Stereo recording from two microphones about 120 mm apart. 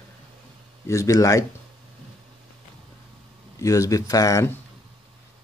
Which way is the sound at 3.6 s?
25° left (ahead or behind).